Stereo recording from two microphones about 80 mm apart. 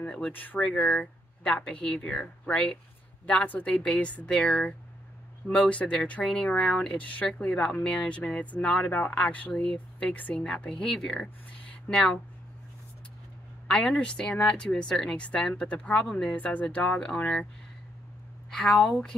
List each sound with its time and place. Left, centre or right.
0.0 s speech: centre
13.7 s speech: centre
18.5 s speech: centre